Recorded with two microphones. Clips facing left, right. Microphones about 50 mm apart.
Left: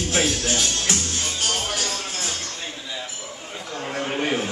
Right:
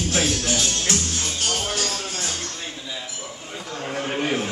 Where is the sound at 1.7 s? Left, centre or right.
Centre.